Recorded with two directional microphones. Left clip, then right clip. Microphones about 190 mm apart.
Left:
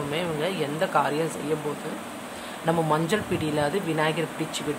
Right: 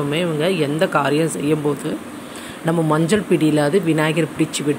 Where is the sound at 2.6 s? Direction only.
20° right (ahead or behind).